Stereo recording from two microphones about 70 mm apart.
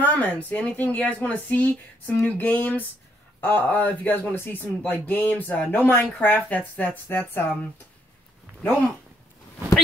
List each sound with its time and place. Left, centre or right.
0.0 s speech: left